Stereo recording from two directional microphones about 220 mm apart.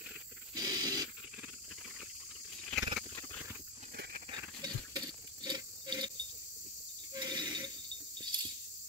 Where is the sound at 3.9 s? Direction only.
45° right (ahead or behind).